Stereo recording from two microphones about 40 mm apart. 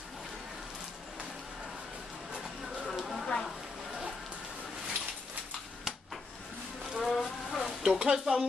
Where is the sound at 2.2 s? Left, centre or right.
Centre.